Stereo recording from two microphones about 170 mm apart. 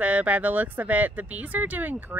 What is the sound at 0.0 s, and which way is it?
Speech, 10° right (ahead or behind).